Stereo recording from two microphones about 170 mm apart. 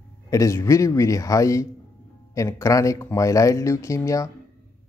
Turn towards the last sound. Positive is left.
turn(degrees=20)  # may be behind; listen again after turning